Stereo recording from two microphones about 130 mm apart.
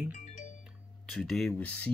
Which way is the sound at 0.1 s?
70° left (ahead or behind).